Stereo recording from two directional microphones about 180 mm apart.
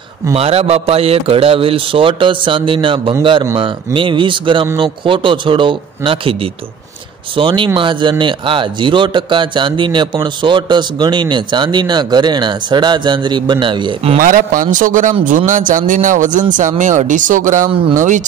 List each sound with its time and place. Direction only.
0.3 s a man's voice: 35° right (ahead or behind)
14.1 s speech: 50° right (ahead or behind)